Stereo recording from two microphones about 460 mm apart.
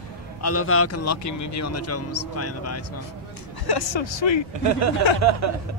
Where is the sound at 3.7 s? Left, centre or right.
Left.